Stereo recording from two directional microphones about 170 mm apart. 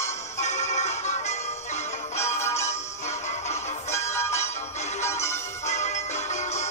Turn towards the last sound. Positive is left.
turn(degrees=40)  # may be behind; listen again after turning